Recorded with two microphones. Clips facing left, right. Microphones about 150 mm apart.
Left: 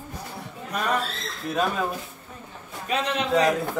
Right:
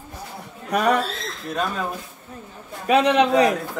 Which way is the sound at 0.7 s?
70° right (ahead or behind).